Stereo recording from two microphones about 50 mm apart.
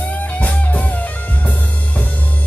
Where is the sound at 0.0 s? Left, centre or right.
Left.